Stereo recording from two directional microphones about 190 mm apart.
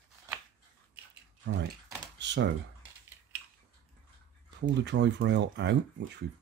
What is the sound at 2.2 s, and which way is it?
Computer keyboard, 65° right (ahead or behind).